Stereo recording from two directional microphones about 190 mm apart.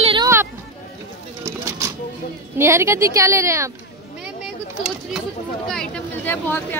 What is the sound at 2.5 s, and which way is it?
Speech, 15° right (ahead or behind).